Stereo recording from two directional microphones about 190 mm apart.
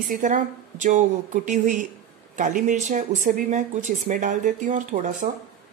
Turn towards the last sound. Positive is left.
turn(degrees=-40)  # may be behind; listen again after turning